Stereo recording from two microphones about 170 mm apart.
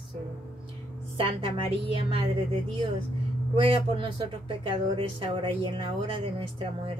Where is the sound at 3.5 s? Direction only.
30° right (ahead or behind).